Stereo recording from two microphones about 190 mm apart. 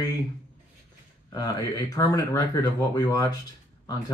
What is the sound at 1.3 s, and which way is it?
Speech, 20° left (ahead or behind).